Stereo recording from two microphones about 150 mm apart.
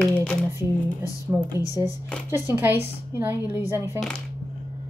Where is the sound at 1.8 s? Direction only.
20° right (ahead or behind).